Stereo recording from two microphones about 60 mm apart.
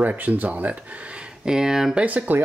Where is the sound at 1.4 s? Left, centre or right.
Centre.